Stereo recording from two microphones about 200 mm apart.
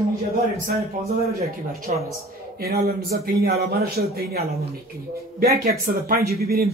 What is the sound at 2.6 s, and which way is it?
Speech, 50° right (ahead or behind).